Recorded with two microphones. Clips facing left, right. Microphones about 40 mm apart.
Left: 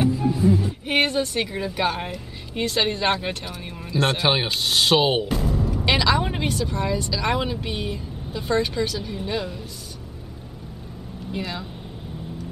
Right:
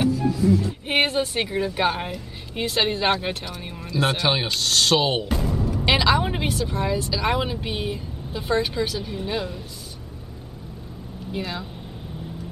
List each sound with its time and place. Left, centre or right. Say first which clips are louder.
0.1 s music: even; left
0.8 s speech: left 1 dB; centre
4.2 s speech: left 1 dB; centre
5.9 s speech: right 1 dB; centre
11.3 s speech: even; centre